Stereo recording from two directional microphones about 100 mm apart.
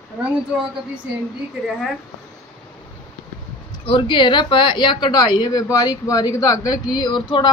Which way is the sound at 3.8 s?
55° left (ahead or behind).